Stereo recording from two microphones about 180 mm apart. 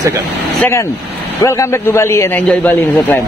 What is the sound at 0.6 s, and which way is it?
A man's voice, 15° left (ahead or behind).